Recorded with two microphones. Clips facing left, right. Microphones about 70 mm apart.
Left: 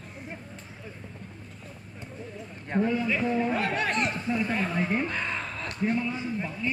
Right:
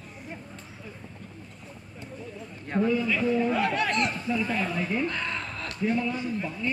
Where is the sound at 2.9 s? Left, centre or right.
Left.